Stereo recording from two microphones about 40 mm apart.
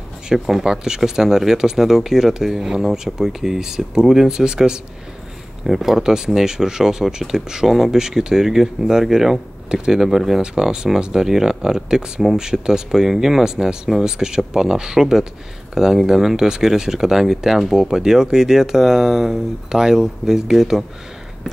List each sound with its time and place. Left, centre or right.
0.3 s speech: centre
5.7 s speech: centre
10.0 s speech: centre
10.4 s speech: centre